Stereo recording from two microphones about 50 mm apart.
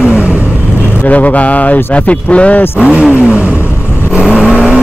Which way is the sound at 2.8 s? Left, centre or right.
Centre.